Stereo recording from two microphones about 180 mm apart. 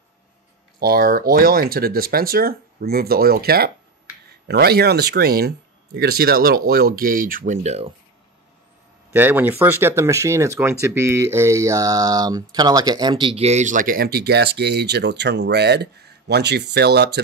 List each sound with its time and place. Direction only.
0.7 s speech: 55° right (ahead or behind); by 7.9 s 35° right (ahead or behind)
9.1 s speech: 10° right (ahead or behind); by 17.2 s 70° right (ahead or behind)